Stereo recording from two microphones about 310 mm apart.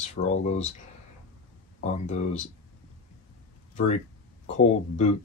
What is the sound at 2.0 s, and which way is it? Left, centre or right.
Speech, left.